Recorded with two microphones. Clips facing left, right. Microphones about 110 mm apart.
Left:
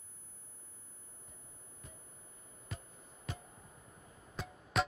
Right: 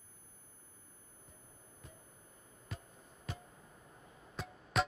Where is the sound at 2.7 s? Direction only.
Centre (ahead or behind).